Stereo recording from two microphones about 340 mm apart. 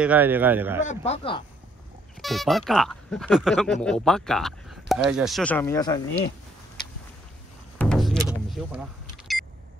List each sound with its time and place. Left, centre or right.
0.0 s speech: centre
0.8 s speech: centre
2.2 s speech: centre
7.8 s music: centre
8.5 s speech: centre